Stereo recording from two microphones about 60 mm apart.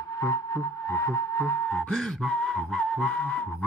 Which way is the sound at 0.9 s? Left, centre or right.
Left.